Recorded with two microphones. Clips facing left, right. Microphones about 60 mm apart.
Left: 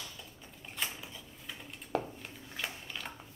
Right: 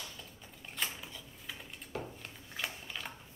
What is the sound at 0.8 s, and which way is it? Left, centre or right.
Typewriter, centre.